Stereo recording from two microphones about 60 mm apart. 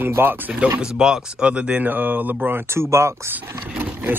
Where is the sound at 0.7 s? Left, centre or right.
Centre.